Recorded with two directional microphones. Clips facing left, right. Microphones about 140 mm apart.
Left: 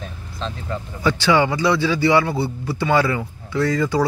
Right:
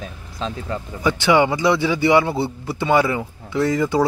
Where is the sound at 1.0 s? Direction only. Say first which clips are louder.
Right 1 dB; 20° right (ahead or behind).